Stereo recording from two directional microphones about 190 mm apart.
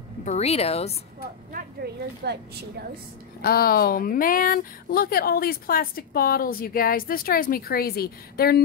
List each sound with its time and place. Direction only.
0.2 s speech: 35° left (ahead or behind)
1.8 s speech: 55° right (ahead or behind)
3.4 s speech: 50° left (ahead or behind)